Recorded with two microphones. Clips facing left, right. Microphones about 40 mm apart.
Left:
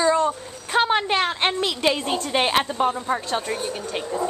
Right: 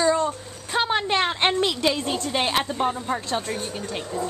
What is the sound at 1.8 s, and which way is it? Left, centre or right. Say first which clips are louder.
Speech: left 2 dB; left.